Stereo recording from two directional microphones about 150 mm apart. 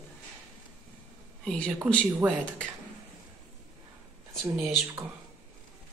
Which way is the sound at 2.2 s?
15° right (ahead or behind).